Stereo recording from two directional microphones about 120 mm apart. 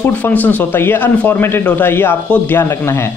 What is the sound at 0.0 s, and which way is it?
Speech, 15° left (ahead or behind).